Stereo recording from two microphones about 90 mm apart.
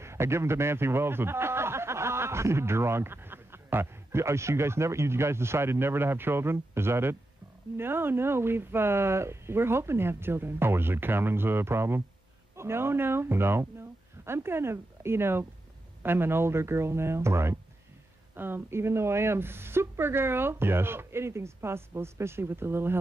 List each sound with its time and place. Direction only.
0.0 s a man's voice: 30° right (ahead or behind)